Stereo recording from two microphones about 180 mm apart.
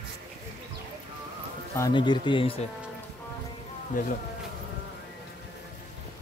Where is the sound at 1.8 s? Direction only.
25° left (ahead or behind).